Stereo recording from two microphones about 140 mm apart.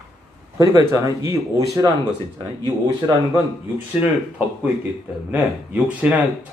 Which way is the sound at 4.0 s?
15° right (ahead or behind).